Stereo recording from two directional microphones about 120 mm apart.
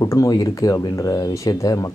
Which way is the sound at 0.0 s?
25° left (ahead or behind).